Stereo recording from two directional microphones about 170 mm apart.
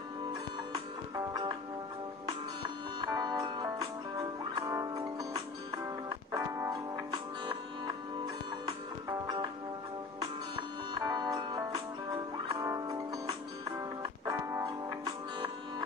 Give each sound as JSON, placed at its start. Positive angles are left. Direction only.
{"t": 1.1, "sound": "music", "side_deg": -25}
{"t": 3.0, "sound": "music", "side_deg": -25}
{"t": 6.0, "sound": "music", "side_deg": -20}
{"t": 9.2, "sound": "music", "side_deg": -25}
{"t": 11.0, "sound": "music", "side_deg": -25}